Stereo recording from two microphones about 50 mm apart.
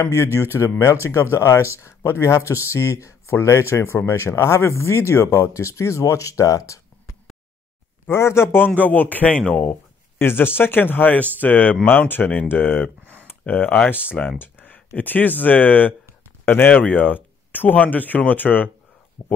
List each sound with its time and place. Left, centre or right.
0.1 s speech: left
2.7 s speech: left
5.4 s speech: left
8.1 s speech: left
8.5 s speech: left
10.1 s speech: left
13.0 s a sound: right
13.4 s speech: left
14.4 s a sound: left
15.0 s speech: left
19.2 s speech: left